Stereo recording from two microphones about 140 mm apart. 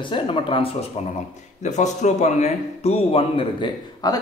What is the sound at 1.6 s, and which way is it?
Speech, 55° left (ahead or behind).